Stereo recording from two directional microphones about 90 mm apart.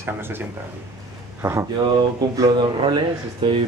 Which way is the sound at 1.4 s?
25° right (ahead or behind).